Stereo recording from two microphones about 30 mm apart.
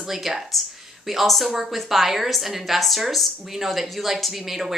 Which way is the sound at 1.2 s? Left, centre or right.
Centre.